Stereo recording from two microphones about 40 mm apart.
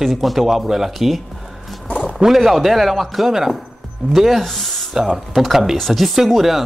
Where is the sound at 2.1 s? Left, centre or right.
Centre.